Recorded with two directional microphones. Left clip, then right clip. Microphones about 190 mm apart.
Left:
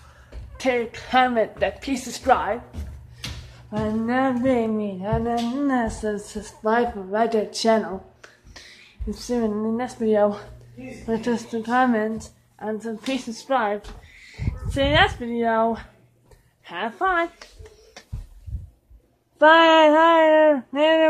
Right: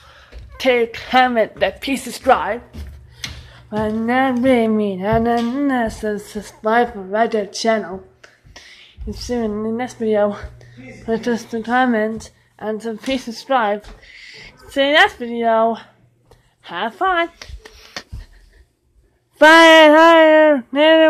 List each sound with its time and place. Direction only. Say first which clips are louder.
0.0 s a woman's voice: right 5 dB; 15° right (ahead or behind)
3.7 s speech: right 6 dB; 25° right (ahead or behind)
5.5 s a woman's voice: right 4 dB; 10° right (ahead or behind)
19.3 s speech: right 6 dB; 30° right (ahead or behind)